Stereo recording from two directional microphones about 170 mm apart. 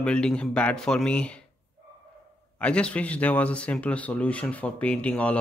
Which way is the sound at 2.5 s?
5° left (ahead or behind).